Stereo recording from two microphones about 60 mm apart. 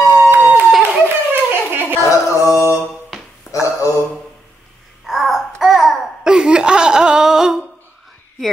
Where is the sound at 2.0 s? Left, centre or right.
Left.